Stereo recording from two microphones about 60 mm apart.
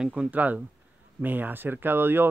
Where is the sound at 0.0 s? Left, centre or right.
Centre.